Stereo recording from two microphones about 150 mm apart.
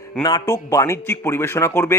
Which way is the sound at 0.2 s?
25° left (ahead or behind).